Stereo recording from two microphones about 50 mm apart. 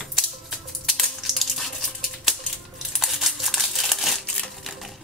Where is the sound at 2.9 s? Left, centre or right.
Centre.